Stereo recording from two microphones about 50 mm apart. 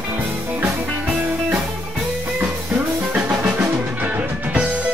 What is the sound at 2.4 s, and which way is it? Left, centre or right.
Music, right.